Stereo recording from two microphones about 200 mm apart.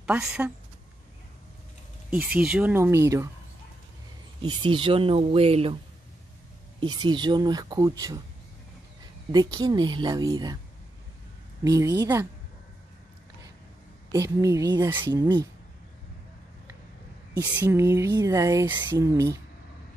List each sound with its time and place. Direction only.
0.0 s speech: 5° right (ahead or behind)
2.0 s speech: 5° right (ahead or behind)
4.4 s speech: 25° right (ahead or behind)
7.1 s speech: 20° right (ahead or behind)
9.3 s speech: 20° right (ahead or behind)
11.6 s speech: 20° right (ahead or behind)
14.1 s speech: 15° right (ahead or behind)
17.4 s speech: 10° right (ahead or behind)